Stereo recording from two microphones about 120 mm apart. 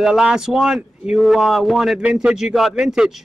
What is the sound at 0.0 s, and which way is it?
A man's voice, 5° right (ahead or behind).